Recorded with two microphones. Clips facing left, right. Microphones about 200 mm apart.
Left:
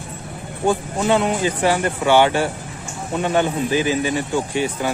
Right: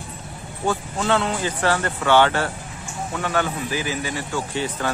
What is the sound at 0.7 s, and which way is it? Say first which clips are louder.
A man's voice: left 4 dB; 15° left (ahead or behind).